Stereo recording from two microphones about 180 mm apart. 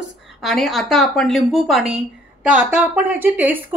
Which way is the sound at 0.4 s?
Centre (ahead or behind).